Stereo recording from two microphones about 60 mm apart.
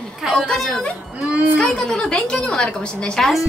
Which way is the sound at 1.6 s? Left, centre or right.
Centre.